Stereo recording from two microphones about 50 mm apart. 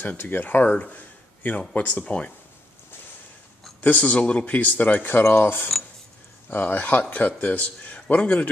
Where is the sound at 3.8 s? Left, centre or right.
Left.